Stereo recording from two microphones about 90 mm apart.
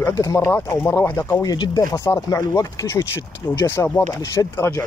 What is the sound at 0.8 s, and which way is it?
Speech, 30° left (ahead or behind).